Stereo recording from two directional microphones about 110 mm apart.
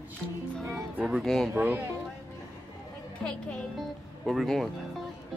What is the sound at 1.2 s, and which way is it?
Speech, 5° left (ahead or behind).